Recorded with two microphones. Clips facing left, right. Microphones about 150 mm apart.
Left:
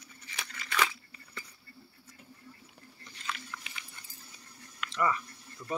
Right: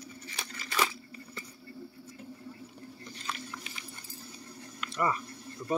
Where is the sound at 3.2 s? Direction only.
35° right (ahead or behind).